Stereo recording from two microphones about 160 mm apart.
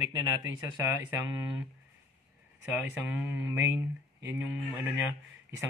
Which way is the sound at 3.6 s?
15° right (ahead or behind).